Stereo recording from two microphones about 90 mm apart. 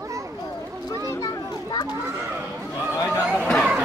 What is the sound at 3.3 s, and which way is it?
Chatter, 10° left (ahead or behind).